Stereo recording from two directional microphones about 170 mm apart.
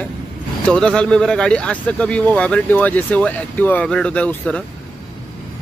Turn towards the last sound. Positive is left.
turn(degrees=5)  # may be behind; listen again after turning